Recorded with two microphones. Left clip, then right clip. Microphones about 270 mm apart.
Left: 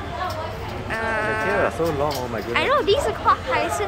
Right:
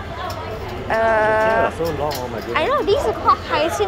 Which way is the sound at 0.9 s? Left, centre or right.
Centre.